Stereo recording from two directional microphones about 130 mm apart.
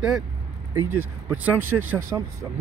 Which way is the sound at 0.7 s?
15° right (ahead or behind).